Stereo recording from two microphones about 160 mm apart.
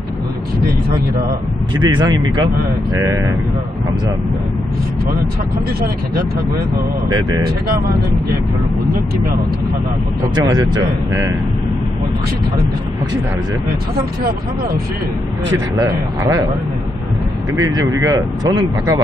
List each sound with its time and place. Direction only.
1.8 s speech: 30° right (ahead or behind)
7.1 s speech: 25° right (ahead or behind)
10.3 s speech: 25° right (ahead or behind)
15.5 s speech: 20° right (ahead or behind)
17.6 s speech: 25° right (ahead or behind)